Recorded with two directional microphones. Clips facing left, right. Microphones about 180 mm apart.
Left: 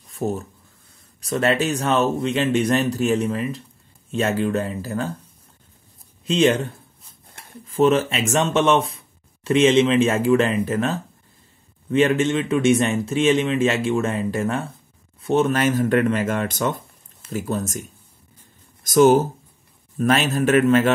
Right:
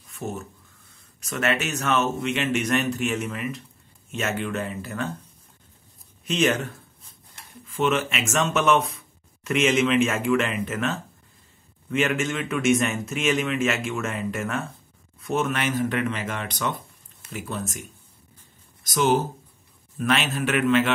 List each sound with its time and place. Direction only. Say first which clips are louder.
0.1 s speech: left 7 dB; 35° left (ahead or behind)
6.2 s a man's voice: left 5 dB; 30° left (ahead or behind)
18.9 s a man's voice: left 8 dB; 45° left (ahead or behind)